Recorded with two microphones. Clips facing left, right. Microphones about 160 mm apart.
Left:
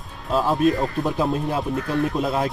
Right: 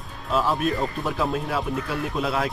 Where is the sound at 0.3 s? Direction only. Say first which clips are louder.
Left 2 dB; 35° left (ahead or behind).